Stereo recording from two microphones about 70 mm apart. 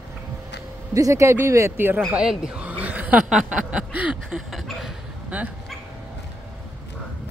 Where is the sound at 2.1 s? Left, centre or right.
Centre.